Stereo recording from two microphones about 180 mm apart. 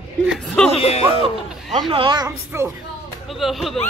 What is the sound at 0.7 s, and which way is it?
Speech, 35° left (ahead or behind).